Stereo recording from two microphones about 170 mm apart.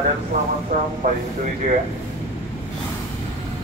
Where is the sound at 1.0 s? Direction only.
55° right (ahead or behind).